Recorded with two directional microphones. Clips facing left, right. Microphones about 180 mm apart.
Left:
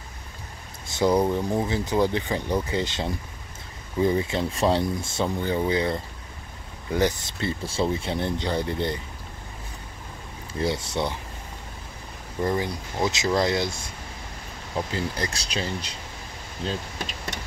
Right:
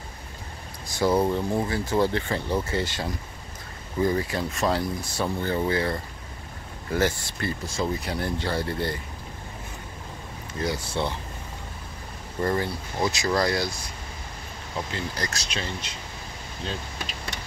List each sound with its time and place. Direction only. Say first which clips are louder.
0.8 s speech: left 1 dB; 20° left (ahead or behind)
10.6 s speech: left 2 dB; 25° left (ahead or behind)
12.4 s speech: even; 15° left (ahead or behind)
15.1 s speech: left 2 dB; 30° left (ahead or behind)